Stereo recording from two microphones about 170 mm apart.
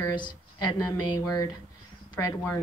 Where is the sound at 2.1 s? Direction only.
10° left (ahead or behind).